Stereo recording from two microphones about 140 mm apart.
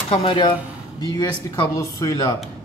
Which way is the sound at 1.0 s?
30° left (ahead or behind).